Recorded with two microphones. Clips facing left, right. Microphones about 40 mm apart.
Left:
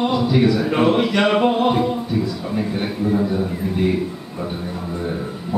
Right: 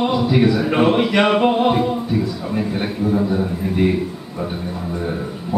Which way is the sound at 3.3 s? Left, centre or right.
Centre.